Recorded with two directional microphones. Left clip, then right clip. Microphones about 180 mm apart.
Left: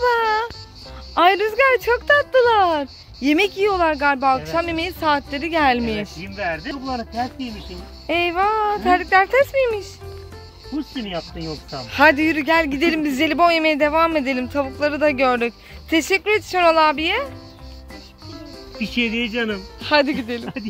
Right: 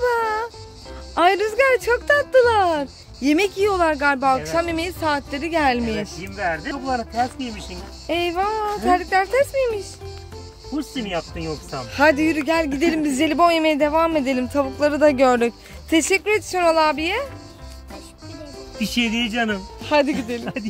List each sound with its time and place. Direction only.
0.0 s music: centre (ahead or behind)
1.1 s speech: centre (ahead or behind)
11.7 s speech: centre (ahead or behind); by 16.0 s 30° right (ahead or behind)
16.0 s speech: 10° right (ahead or behind)
18.8 s speech: 75° right (ahead or behind)
19.8 s speech: centre (ahead or behind)